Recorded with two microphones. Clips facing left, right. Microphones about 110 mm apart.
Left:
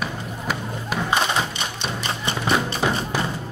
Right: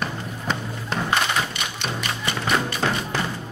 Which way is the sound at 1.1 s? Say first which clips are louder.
Left 2 dB; 20° left (ahead or behind).